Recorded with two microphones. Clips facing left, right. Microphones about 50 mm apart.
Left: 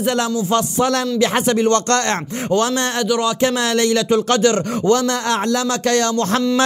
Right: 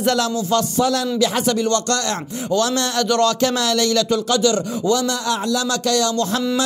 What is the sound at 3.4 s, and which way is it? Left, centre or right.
Speech, left.